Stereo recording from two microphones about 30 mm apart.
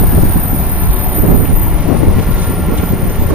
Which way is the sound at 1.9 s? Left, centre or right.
Right.